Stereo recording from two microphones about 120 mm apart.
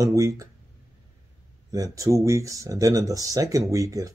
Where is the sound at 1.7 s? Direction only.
30° right (ahead or behind).